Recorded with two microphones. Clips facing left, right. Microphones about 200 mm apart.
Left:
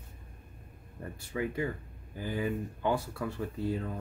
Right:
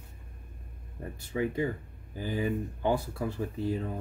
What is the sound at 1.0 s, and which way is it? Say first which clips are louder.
Speech: right 3 dB; 20° right (ahead or behind).